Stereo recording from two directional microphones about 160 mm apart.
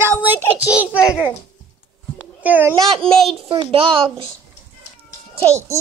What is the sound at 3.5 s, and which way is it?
Speech, 30° right (ahead or behind).